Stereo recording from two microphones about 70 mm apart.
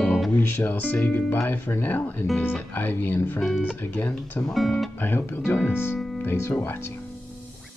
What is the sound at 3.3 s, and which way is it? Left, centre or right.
Speech, centre.